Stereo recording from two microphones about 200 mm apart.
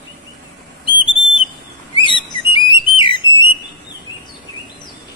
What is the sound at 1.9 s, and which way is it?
Bird, 25° left (ahead or behind).